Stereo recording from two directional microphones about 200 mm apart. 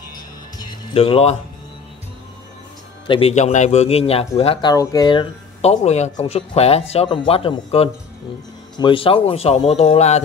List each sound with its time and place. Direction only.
0.6 s music: 25° left (ahead or behind)
3.1 s speech: 30° left (ahead or behind)